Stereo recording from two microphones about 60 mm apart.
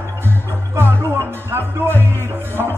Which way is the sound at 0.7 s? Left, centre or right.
Right.